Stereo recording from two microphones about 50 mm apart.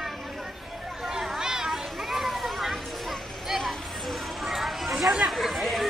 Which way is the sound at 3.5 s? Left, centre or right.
Centre.